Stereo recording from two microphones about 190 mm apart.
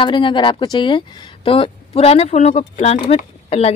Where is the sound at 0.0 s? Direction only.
25° left (ahead or behind).